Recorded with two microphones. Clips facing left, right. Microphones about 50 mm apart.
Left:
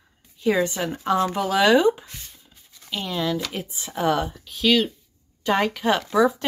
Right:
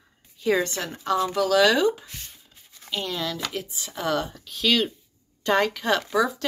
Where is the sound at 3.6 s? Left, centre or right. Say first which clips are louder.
Left 5 dB; left.